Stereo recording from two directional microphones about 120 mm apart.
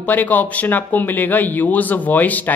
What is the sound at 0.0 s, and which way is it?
A woman's voice, 15° left (ahead or behind).